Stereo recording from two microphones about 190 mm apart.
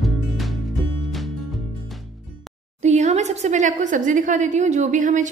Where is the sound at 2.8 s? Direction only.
40° right (ahead or behind).